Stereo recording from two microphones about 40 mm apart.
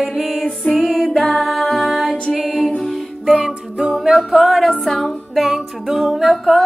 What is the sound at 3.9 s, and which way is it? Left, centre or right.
Music, centre.